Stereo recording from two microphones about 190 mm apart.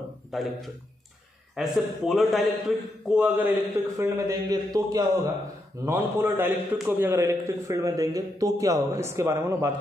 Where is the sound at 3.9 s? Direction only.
15° right (ahead or behind).